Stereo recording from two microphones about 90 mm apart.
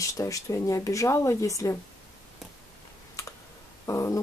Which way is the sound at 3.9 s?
35° left (ahead or behind).